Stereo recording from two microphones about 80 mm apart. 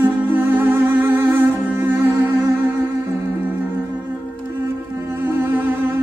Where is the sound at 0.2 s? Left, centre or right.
Right.